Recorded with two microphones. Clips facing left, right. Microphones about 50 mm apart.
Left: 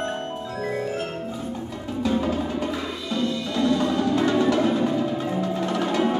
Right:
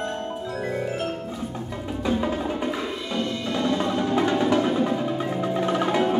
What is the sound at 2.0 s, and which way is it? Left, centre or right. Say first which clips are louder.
Music: left 1 dB; centre.